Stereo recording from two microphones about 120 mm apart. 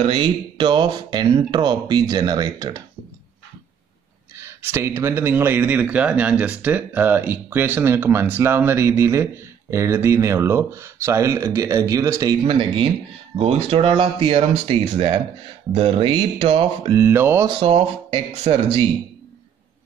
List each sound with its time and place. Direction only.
0.0 s speech: 50° right (ahead or behind)
4.4 s speech: 20° right (ahead or behind)
12.4 s speech: 45° right (ahead or behind)
13.4 s speech: 60° right (ahead or behind)
16.9 s speech: 20° right (ahead or behind)
17.6 s speech: 50° right (ahead or behind)